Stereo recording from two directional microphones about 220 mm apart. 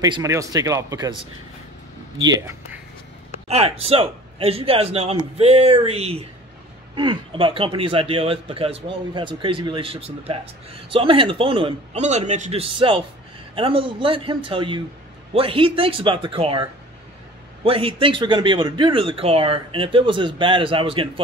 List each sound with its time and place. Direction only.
0.0 s speech: 15° right (ahead or behind)
2.2 s speech: 15° right (ahead or behind)
3.4 s speech: 30° right (ahead or behind)
17.6 s speech: 25° right (ahead or behind)